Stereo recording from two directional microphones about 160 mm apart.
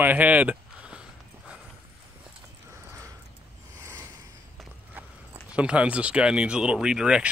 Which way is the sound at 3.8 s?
15° right (ahead or behind).